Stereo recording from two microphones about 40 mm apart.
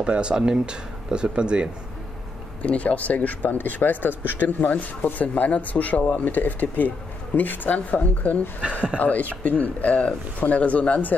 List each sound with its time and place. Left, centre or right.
0.0 s speech: right
2.6 s speech: left